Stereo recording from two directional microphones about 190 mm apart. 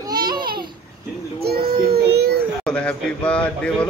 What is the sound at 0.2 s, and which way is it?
Babbling, 50° right (ahead or behind).